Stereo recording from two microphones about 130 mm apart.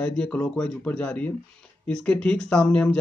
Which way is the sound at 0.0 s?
10° left (ahead or behind).